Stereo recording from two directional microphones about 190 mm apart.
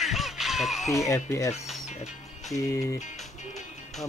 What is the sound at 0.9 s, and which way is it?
Speech, 15° left (ahead or behind).